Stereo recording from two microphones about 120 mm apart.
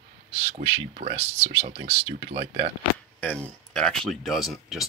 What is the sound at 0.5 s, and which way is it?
Speech, 70° right (ahead or behind).